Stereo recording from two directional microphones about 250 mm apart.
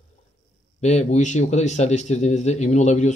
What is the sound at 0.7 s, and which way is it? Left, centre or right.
Speech, left.